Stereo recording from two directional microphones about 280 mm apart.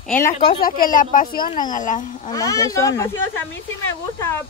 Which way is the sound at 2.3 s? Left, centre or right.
Centre.